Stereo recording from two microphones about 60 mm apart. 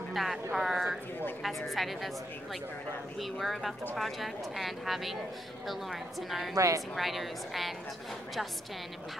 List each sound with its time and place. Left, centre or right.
0.1 s speech: centre
3.2 s speech: centre
6.5 s a woman's voice: right
7.0 s speech: centre